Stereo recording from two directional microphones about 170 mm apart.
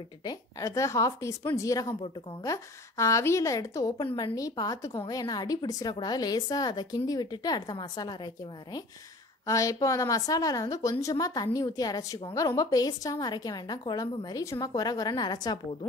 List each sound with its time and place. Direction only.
0.2 s a woman's voice: 20° left (ahead or behind)
9.5 s a woman's voice: 20° left (ahead or behind)